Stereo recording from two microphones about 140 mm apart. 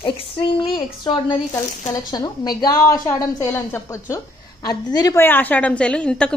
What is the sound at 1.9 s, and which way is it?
A woman's voice, 25° left (ahead or behind).